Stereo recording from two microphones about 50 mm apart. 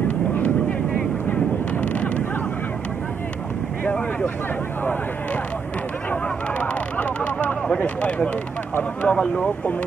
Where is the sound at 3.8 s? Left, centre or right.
Left.